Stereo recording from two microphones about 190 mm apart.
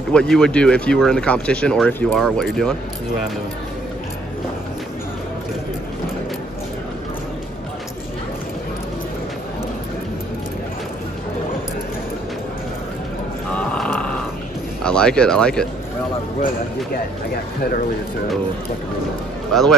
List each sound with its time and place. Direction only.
0.1 s speech: 5° left (ahead or behind)
13.6 s a sound: 5° left (ahead or behind)
14.8 s speech: 5° left (ahead or behind)